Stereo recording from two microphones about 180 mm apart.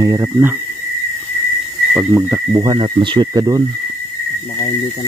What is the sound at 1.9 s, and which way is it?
Speech, 15° right (ahead or behind).